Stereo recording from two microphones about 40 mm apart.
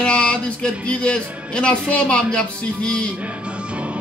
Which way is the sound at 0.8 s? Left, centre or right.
Left.